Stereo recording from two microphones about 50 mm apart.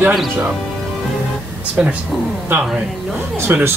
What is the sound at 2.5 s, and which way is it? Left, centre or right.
Speech, right.